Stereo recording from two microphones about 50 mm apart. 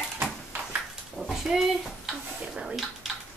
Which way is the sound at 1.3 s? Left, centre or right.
Centre.